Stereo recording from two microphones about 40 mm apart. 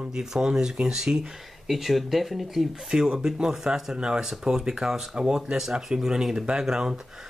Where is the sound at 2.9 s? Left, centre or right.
Centre.